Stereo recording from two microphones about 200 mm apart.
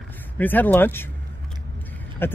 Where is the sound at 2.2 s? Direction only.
10° left (ahead or behind).